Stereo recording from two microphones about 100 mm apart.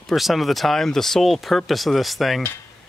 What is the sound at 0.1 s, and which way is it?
Speech, centre (ahead or behind).